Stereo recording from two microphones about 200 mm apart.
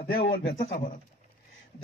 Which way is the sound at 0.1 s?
50° left (ahead or behind).